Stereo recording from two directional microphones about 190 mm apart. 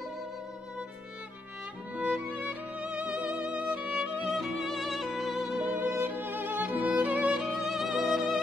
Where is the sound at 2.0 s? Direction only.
5° right (ahead or behind).